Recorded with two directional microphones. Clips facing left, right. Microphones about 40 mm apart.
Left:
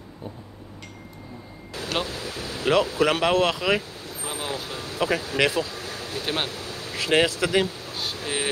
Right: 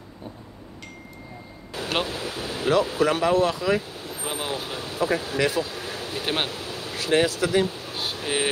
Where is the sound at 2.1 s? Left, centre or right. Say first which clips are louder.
Right 2 dB; right.